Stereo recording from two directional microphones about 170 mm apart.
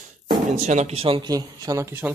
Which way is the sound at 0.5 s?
40° right (ahead or behind).